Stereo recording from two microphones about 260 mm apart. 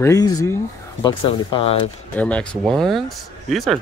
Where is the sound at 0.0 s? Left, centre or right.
Centre.